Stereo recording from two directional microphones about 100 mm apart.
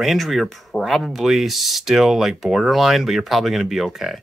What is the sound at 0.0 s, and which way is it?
Speech, centre (ahead or behind).